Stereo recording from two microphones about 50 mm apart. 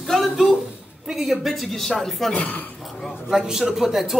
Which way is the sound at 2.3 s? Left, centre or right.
Left.